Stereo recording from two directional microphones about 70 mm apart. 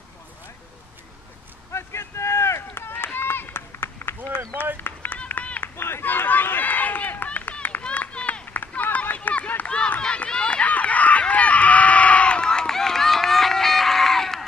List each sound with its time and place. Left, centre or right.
1.7 s vehicle: left
3.2 s run: left
5.8 s run: left; by 14.4 s centre